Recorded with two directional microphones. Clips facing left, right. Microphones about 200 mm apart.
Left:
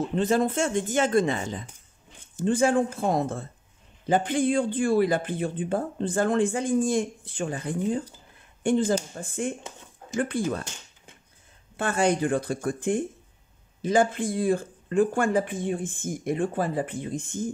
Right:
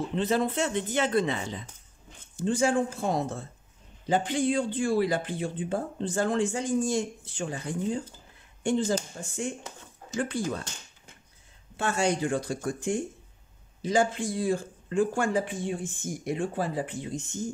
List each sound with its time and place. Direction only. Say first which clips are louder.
0.1 s speech: left 3 dB; 45° left (ahead or behind)
11.7 s speech: left 3 dB; 55° left (ahead or behind)